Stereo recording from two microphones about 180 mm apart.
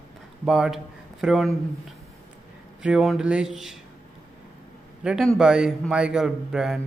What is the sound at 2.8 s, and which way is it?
Speech, 5° right (ahead or behind).